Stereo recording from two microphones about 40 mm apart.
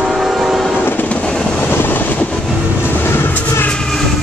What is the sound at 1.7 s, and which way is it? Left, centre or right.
Vehicle, left.